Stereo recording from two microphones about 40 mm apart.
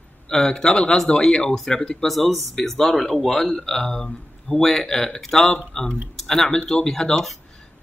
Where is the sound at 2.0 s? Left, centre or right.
Centre; by 5.9 s left.